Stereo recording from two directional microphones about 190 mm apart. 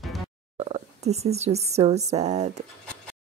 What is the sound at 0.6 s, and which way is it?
Speech, 35° right (ahead or behind).